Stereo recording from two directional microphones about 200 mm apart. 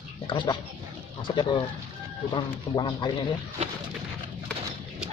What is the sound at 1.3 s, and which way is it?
Speech, 25° left (ahead or behind).